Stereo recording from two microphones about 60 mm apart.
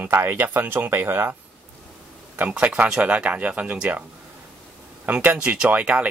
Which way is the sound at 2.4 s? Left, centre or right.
Right.